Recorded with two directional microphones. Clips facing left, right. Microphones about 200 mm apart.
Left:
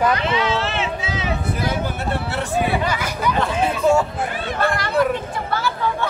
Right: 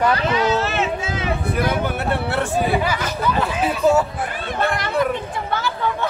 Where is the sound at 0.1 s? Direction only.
40° right (ahead or behind).